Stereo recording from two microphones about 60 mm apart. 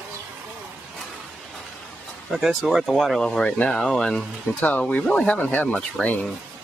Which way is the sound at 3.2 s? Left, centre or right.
Centre.